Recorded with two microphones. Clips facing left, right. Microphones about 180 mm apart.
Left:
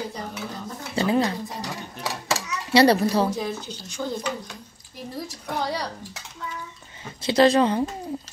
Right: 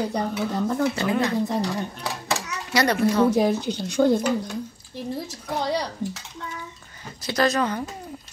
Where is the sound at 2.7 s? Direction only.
30° left (ahead or behind).